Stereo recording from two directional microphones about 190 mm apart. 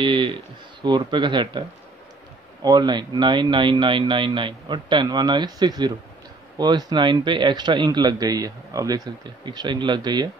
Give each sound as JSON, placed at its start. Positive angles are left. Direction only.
{"t": 0.0, "sound": "speech", "side_deg": -25}